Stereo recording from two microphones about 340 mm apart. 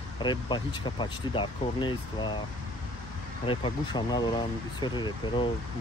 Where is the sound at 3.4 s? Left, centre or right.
Centre.